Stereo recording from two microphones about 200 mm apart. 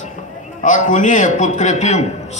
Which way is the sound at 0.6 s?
40° left (ahead or behind).